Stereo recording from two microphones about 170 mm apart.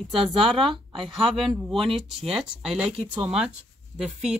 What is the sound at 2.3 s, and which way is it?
Speech, 5° right (ahead or behind).